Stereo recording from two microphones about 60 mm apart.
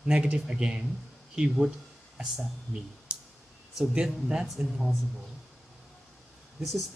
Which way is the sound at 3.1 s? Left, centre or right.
Centre.